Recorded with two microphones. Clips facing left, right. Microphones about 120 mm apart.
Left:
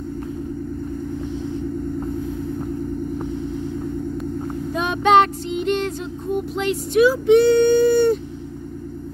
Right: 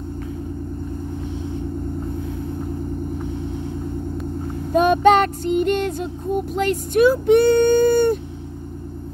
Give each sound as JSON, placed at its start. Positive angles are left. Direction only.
{"t": 4.7, "sound": "child singing", "side_deg": -50}